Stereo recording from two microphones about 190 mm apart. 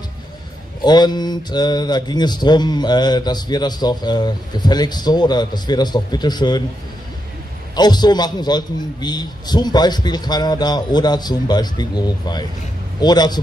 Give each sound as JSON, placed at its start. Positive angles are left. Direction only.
{"t": 0.8, "sound": "speech", "side_deg": 20}
{"t": 7.7, "sound": "speech", "side_deg": 20}